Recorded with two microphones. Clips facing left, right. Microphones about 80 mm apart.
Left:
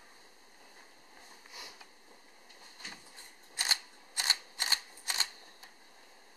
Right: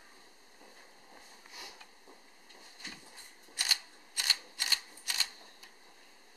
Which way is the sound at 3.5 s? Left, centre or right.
Left.